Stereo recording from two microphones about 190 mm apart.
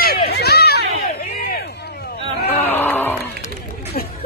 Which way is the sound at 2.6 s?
10° left (ahead or behind).